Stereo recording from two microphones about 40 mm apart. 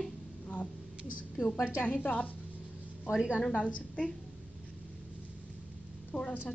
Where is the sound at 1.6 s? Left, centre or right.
Left.